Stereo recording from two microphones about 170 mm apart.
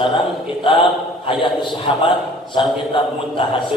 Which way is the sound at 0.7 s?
30° left (ahead or behind).